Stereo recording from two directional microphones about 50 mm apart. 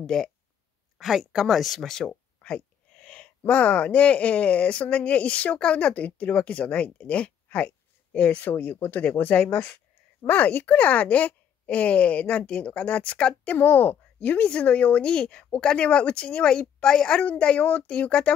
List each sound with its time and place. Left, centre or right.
0.0 s speech: centre
0.9 s speech: centre
2.0 s speech: left
13.6 s speech: left; by 17.2 s centre
17.2 s speech: left